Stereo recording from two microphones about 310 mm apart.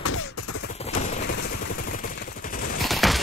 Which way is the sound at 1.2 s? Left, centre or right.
Left.